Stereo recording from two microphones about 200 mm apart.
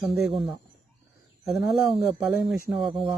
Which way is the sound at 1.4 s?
Centre (ahead or behind).